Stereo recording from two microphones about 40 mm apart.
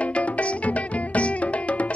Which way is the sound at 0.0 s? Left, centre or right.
Left.